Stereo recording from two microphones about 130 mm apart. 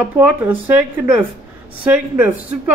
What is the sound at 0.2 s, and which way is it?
Speech, 15° right (ahead or behind).